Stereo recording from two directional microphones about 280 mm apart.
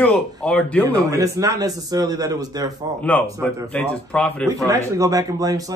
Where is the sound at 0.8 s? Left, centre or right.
Centre.